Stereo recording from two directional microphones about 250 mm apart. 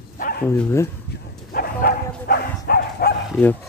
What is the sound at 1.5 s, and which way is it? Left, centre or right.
Bow-wow, left.